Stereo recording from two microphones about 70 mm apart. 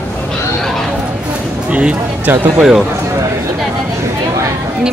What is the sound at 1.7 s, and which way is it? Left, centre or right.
Music, centre.